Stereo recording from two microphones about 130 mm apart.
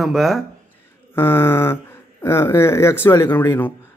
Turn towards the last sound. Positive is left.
turn(degrees=15)  # may be behind; listen again after turning